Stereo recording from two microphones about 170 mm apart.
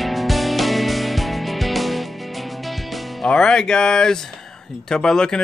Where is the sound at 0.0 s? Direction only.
Centre (ahead or behind).